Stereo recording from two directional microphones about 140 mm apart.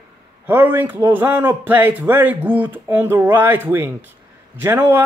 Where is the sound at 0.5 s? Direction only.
15° right (ahead or behind).